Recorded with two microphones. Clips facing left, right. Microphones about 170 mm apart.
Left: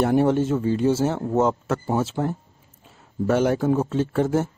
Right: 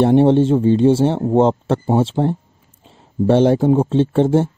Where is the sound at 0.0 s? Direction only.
25° right (ahead or behind).